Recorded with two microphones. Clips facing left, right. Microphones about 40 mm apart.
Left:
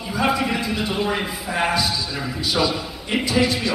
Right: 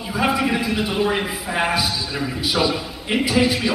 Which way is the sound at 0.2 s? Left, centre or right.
Centre.